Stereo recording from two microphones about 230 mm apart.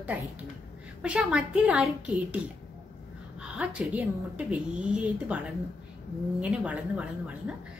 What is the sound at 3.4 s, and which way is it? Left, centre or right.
Speech, centre.